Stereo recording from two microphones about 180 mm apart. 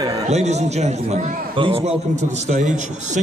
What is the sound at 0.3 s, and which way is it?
A man's voice, 40° right (ahead or behind).